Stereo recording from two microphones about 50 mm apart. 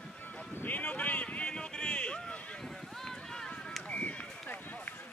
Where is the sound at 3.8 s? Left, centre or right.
Left.